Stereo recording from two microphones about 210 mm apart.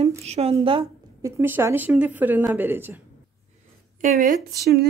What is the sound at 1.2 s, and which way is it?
Speech, 10° right (ahead or behind).